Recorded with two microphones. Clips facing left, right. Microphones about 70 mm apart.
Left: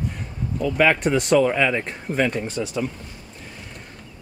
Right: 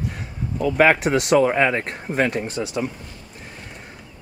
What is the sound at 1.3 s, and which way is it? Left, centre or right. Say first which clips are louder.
Speech: right 2 dB; right.